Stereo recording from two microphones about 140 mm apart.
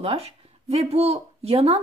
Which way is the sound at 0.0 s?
45° right (ahead or behind).